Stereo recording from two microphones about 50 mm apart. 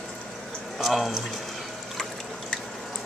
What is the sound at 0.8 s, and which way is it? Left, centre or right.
Speech, centre.